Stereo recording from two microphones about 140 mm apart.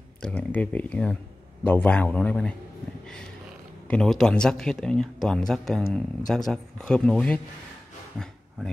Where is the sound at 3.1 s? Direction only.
5° left (ahead or behind).